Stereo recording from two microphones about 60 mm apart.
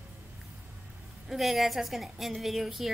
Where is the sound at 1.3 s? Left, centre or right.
Centre.